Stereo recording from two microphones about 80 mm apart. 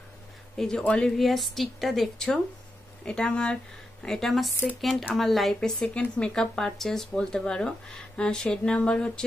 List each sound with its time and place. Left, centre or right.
0.6 s speech: centre